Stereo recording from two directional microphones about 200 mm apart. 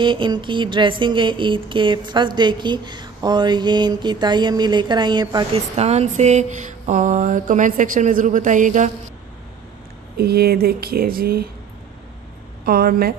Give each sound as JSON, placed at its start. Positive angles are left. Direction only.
{"t": 0.0, "sound": "speech", "side_deg": -25}
{"t": 5.8, "sound": "a sound", "side_deg": -35}
{"t": 10.1, "sound": "speech", "side_deg": -50}
{"t": 12.6, "sound": "speech", "side_deg": -50}